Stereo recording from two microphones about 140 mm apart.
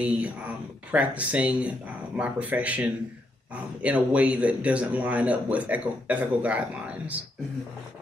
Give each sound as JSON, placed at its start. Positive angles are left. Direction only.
{"t": 0.0, "sound": "speech", "side_deg": -10}